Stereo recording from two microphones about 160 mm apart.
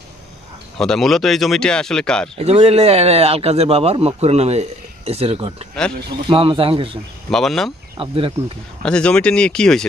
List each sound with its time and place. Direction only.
0.7 s speech: centre (ahead or behind)
2.3 s speech: 40° right (ahead or behind)
7.2 s speech: 5° left (ahead or behind)
8.0 s speech: 35° right (ahead or behind)
8.8 s speech: 5° left (ahead or behind)